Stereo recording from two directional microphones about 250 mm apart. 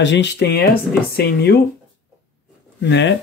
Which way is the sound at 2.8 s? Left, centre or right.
Left.